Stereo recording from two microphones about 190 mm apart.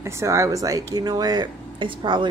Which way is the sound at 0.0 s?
15° right (ahead or behind).